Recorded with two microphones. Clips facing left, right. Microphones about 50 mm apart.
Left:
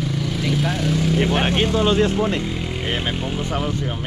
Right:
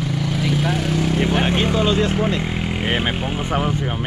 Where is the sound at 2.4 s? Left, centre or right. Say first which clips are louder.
Right 2 dB; right.